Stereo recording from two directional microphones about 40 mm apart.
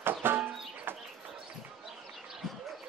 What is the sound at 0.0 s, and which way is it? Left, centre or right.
Music, right.